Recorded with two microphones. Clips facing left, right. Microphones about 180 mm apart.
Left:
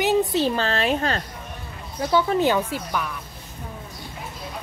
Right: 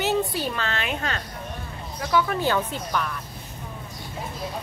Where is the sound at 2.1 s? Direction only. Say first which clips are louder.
Left 3 dB; 20° left (ahead or behind).